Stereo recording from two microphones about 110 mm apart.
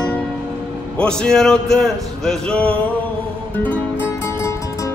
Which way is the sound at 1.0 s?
5° left (ahead or behind).